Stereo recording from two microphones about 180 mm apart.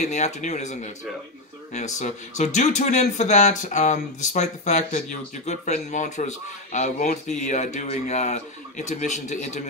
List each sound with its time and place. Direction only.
0.0 s speech: 40° left (ahead or behind)